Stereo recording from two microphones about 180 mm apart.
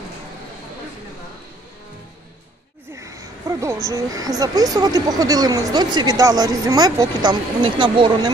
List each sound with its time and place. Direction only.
2.9 s speech: 15° right (ahead or behind)